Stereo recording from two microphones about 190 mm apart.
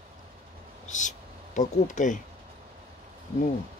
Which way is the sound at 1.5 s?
40° left (ahead or behind).